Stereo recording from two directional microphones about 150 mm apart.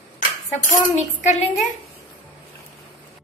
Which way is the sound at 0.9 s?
50° left (ahead or behind).